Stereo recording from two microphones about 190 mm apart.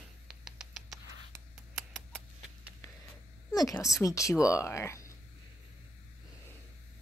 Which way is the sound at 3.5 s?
20° left (ahead or behind).